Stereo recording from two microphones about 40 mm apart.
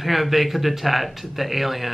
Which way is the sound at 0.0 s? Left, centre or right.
Centre.